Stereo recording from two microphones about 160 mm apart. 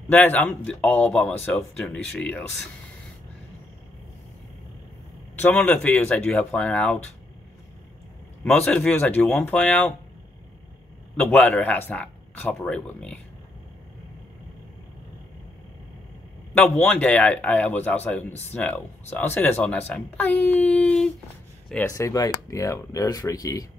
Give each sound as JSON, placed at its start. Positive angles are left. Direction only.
{"t": 0.1, "sound": "speech", "side_deg": 10}
{"t": 5.4, "sound": "speech", "side_deg": 10}
{"t": 8.5, "sound": "speech", "side_deg": 5}
{"t": 11.1, "sound": "speech", "side_deg": 10}
{"t": 16.5, "sound": "speech", "side_deg": 5}
{"t": 21.8, "sound": "speech", "side_deg": 20}